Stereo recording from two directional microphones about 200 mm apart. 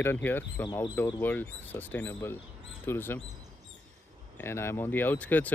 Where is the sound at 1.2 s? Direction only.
10° left (ahead or behind).